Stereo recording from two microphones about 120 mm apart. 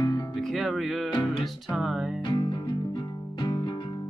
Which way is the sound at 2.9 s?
40° left (ahead or behind).